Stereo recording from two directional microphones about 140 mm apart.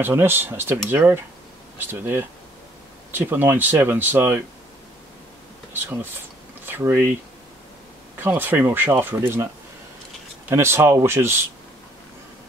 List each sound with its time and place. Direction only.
0.0 s speech: 15° right (ahead or behind)
6.6 s speech: 15° right (ahead or behind)
8.2 s speech: 15° right (ahead or behind)
10.5 s speech: 15° right (ahead or behind)